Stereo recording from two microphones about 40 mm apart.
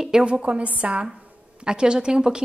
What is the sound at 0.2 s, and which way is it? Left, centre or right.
Speech, right.